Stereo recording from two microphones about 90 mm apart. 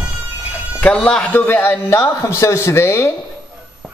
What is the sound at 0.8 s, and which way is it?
Speech, 15° left (ahead or behind).